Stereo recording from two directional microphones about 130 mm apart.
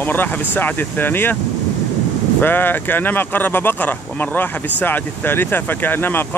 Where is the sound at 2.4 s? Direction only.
15° left (ahead or behind).